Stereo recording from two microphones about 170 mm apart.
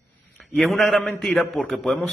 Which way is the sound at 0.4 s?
Centre (ahead or behind).